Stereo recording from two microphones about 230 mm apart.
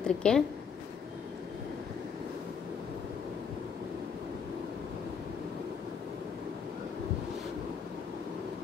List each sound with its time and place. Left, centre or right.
0.0 s a woman's voice: centre